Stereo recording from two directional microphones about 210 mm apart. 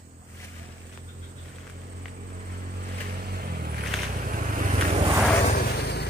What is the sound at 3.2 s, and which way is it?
Vehicle, 45° right (ahead or behind).